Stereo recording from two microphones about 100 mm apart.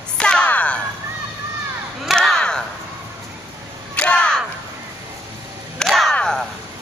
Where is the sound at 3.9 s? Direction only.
15° left (ahead or behind).